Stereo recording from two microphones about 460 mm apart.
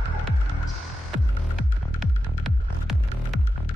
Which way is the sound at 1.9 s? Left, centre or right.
Centre.